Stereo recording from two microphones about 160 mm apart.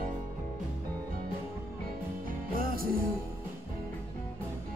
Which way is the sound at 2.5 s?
65° right (ahead or behind).